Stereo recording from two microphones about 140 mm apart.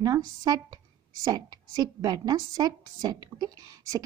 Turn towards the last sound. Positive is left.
turn(degrees=-25)  # may be behind; listen again after turning